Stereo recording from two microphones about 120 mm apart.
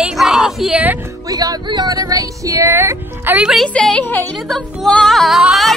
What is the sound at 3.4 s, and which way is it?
Speech, centre (ahead or behind).